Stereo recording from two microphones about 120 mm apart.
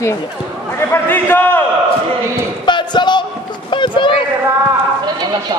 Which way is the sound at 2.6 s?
40° left (ahead or behind).